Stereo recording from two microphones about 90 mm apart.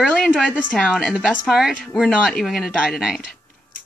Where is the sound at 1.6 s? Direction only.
5° right (ahead or behind).